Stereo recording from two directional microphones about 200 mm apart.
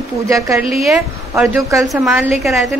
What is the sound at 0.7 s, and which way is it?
A woman's voice, centre (ahead or behind).